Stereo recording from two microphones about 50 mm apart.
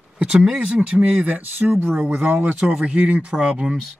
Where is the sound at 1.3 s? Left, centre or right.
Right.